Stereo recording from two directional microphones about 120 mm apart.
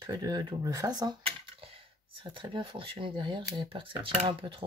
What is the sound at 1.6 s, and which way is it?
Speech, 50° right (ahead or behind).